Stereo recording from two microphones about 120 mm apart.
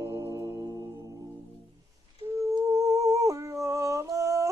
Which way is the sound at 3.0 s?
25° right (ahead or behind).